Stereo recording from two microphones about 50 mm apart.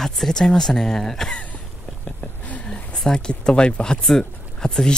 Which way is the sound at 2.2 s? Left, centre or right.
Left.